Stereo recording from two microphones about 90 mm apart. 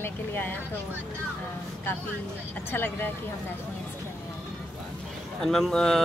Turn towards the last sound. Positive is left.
turn(degrees=5)  # may be behind; listen again after turning